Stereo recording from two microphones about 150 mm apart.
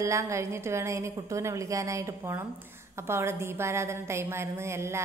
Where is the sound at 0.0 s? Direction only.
20° right (ahead or behind).